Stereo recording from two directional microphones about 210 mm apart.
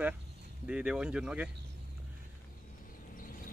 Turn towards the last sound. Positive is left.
turn(degrees=40)  # may be behind; listen again after turning